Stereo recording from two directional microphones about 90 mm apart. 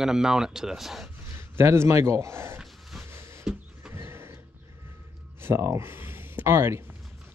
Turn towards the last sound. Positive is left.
turn(degrees=-30)  # may be behind; listen again after turning